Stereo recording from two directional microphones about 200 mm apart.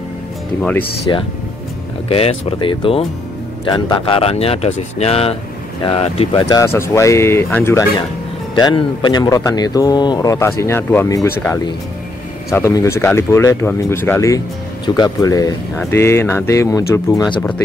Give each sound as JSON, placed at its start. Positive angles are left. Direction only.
{"t": 0.6, "sound": "speech", "side_deg": 5}
{"t": 1.1, "sound": "speech", "side_deg": 20}
{"t": 6.5, "sound": "speech", "side_deg": 15}